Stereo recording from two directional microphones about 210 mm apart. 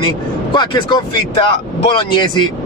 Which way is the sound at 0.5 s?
20° left (ahead or behind).